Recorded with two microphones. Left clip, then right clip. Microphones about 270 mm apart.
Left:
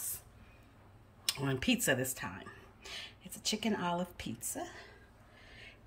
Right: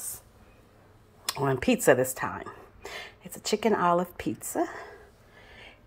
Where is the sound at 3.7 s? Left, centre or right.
Centre.